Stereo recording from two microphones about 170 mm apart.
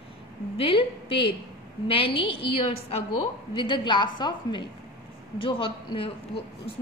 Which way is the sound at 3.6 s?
25° left (ahead or behind).